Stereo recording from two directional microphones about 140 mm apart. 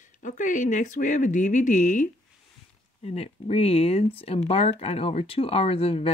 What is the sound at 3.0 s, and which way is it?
Speech, 45° left (ahead or behind).